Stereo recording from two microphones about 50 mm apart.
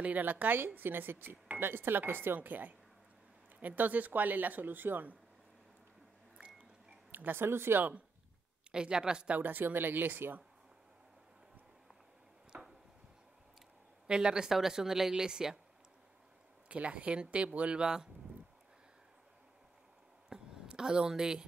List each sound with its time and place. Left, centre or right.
0.0 s speech: right
6.6 s a sound: right
8.7 s speech: centre
9.3 s speech: right
14.0 s speech: centre
16.6 s speech: right
20.3 s a sound: centre
20.7 s speech: centre